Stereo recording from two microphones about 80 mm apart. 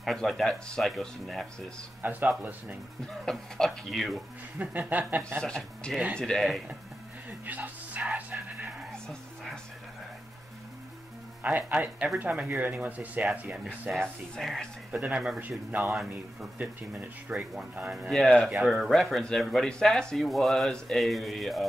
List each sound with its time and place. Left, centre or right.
0.0 s speech: centre
2.0 s speech: right
3.3 s speech: centre
4.6 s speech: centre
5.4 s speech: centre
7.2 s music: right
9.0 s music: centre
11.4 s speech: centre
14.3 s speech: centre
14.9 s speech: centre
17.3 s speech: centre
17.9 s speech: centre